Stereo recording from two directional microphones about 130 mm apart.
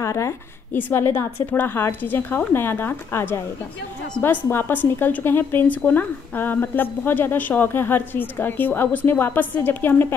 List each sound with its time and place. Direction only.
0.0 s a woman's voice: 20° left (ahead or behind)